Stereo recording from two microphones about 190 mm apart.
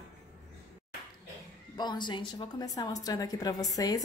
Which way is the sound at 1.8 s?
25° left (ahead or behind).